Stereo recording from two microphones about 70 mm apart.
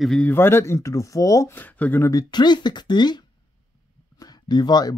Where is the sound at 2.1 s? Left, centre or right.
Left.